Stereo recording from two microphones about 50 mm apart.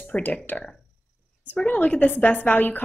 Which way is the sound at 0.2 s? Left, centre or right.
Left.